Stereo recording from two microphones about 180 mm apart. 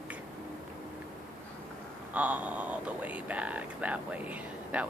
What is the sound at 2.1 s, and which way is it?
Speech, 10° right (ahead or behind).